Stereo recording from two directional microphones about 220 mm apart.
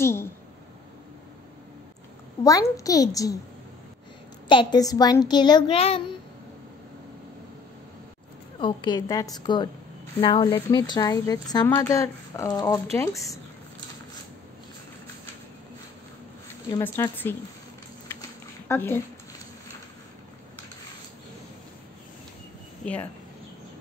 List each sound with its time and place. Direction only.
0.0 s a sound: 10° left (ahead or behind)
2.4 s a woman's voice: 15° left (ahead or behind)
4.5 s a woman's voice: 20° left (ahead or behind)
8.5 s a woman's voice: 20° left (ahead or behind)
16.7 s a woman's voice: 15° left (ahead or behind)
18.7 s speech: 10° left (ahead or behind)
22.8 s speech: 5° left (ahead or behind)